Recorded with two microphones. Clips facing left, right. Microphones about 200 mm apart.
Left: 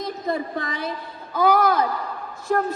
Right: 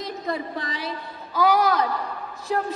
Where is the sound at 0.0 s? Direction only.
50° left (ahead or behind).